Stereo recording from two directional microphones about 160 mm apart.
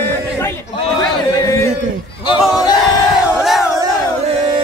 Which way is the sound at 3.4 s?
Centre (ahead or behind).